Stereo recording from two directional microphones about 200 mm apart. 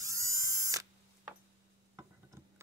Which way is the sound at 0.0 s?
15° right (ahead or behind).